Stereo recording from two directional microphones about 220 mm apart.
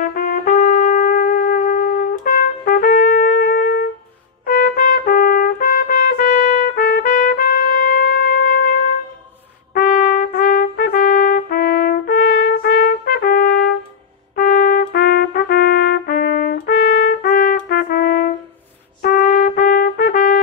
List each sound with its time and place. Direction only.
0.1 s trumpet: 40° left (ahead or behind)
9.8 s trumpet: 40° left (ahead or behind)